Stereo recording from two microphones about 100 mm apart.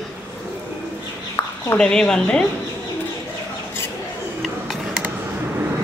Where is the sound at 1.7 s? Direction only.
5° left (ahead or behind).